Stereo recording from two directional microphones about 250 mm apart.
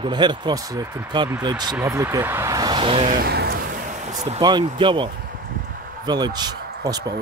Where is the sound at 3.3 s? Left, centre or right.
Right.